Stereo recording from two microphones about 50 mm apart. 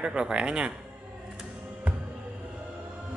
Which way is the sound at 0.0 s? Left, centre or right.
Centre.